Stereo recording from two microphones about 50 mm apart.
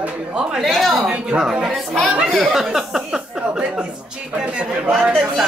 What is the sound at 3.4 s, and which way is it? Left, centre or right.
Speech, right.